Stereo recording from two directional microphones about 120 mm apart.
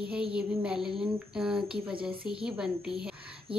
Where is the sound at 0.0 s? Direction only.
10° right (ahead or behind).